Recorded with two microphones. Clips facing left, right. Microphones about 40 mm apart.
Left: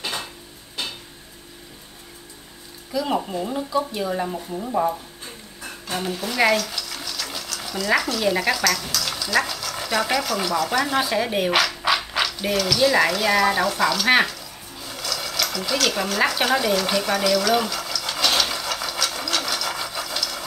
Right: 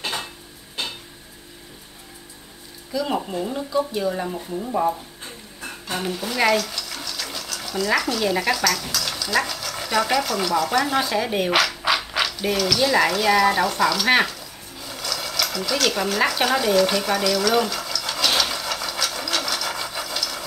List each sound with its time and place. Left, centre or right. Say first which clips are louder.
2.9 s speech: left 1 dB; centre
5.9 s sewing machine: even; centre
7.6 s speech: even; centre
14.8 s a sound: even; centre